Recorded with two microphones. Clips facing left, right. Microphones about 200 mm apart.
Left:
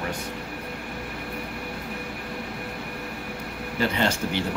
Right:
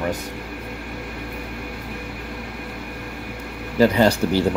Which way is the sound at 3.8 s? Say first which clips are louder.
Right 9 dB; 40° right (ahead or behind).